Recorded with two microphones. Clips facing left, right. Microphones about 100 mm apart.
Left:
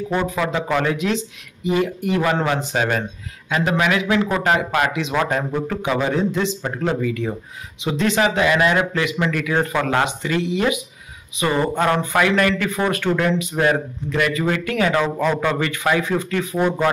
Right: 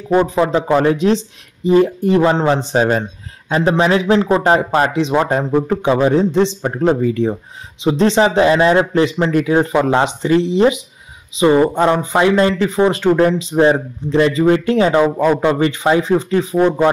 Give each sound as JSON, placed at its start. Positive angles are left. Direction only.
{"t": 0.3, "sound": "speech", "side_deg": -30}